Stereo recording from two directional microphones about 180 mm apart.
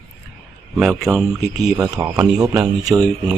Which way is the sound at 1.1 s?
5° right (ahead or behind).